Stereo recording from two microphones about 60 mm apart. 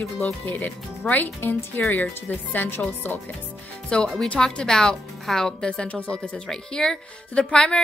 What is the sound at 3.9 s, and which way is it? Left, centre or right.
Speech, centre.